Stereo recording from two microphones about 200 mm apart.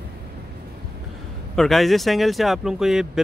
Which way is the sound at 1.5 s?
Centre (ahead or behind).